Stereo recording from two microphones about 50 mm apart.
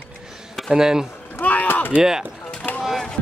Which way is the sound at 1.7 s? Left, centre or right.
Left.